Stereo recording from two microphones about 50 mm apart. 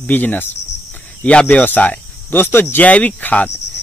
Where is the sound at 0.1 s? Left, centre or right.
Left.